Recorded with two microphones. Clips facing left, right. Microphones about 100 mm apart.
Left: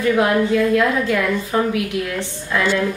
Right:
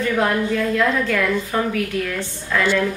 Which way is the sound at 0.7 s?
10° left (ahead or behind).